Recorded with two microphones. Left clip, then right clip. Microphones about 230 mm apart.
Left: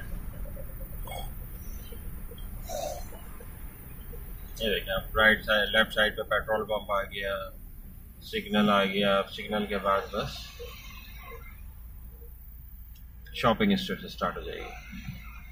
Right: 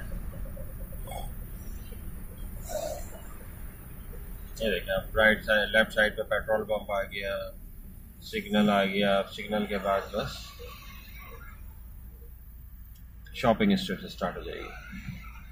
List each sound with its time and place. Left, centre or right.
1.6 s vehicle: right
2.5 s a sound: right
4.6 s speech: centre
13.4 s speech: centre